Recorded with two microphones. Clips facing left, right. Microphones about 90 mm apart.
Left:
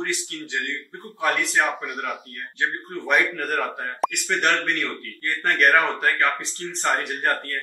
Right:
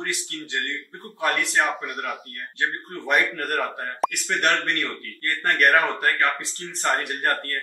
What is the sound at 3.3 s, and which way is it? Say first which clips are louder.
Speech: left 1 dB; 5° left (ahead or behind).